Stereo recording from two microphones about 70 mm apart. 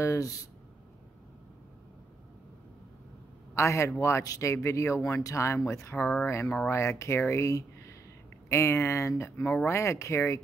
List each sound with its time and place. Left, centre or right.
0.0 s speech: left
3.5 s speech: left
6.4 s speech: centre
6.7 s speech: left
9.4 s speech: left
9.7 s speech: left